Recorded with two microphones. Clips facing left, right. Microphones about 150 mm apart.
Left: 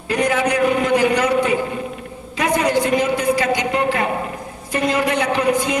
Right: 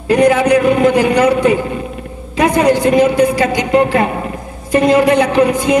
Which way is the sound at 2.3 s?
55° right (ahead or behind).